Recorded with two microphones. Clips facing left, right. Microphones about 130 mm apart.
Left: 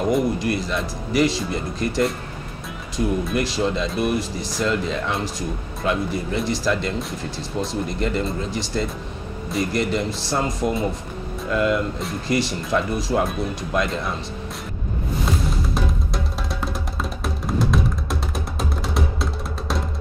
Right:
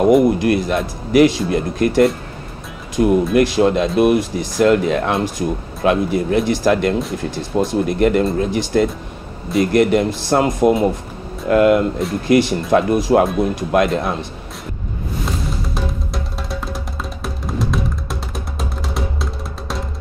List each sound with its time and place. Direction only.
0.4 s speech: 55° right (ahead or behind)
15.7 s music: centre (ahead or behind)